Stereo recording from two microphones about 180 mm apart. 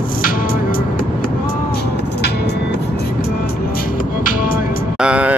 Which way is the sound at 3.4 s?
55° left (ahead or behind).